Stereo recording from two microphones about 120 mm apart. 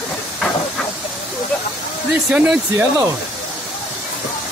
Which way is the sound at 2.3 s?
10° right (ahead or behind).